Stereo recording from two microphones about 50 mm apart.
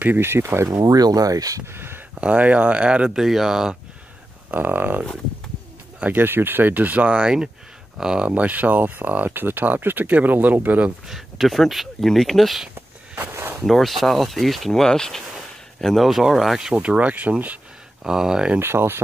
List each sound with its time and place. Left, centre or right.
0.2 s speech: right
2.1 s speech: right
3.2 s speech: centre
4.6 s speech: right
6.1 s speech: right; by 8.4 s centre
8.4 s speech: right
11.1 s speech: centre
13.2 s a sound: right
13.7 s speech: centre
14.7 s speech: centre
16.8 s speech: right
18.0 s speech: centre
18.6 s speech: right